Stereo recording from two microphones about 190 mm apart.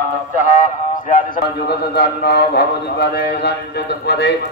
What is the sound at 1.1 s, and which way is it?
A man's voice, 55° left (ahead or behind).